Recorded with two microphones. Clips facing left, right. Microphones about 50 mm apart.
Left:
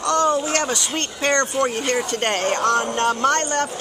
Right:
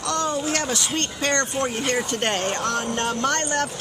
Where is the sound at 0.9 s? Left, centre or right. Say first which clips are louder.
Left 3 dB; left.